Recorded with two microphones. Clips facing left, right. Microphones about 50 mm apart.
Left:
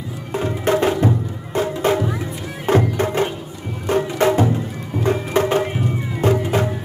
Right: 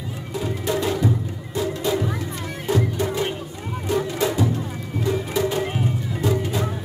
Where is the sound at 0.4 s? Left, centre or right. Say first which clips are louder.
Left 6 dB; left.